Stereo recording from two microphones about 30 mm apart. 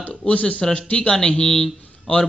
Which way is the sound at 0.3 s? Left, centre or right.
Left.